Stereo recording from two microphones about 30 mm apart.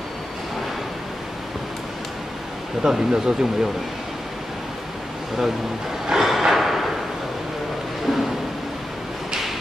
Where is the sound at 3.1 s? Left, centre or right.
Right.